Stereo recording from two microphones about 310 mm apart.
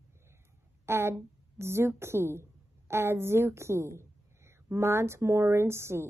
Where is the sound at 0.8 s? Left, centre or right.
Centre.